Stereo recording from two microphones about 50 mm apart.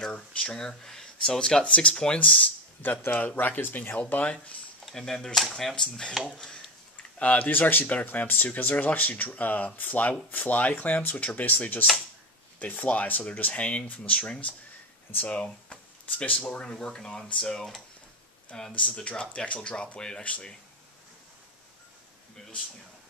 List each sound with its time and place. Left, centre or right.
0.0 s speech: centre
2.1 s speech: left
4.2 s speech: left
4.9 s speech: centre
7.2 s speech: left; by 17.6 s centre
18.7 s speech: left
22.4 s a sound: centre